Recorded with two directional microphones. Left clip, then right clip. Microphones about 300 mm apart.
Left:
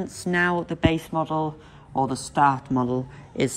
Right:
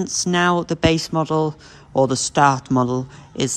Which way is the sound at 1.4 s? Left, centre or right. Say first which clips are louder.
Right 6 dB; left.